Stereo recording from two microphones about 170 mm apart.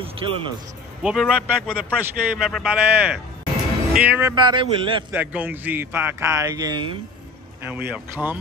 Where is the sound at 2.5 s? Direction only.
5° right (ahead or behind).